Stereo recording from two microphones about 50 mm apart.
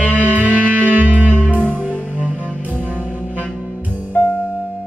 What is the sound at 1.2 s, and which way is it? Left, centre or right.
Music, left.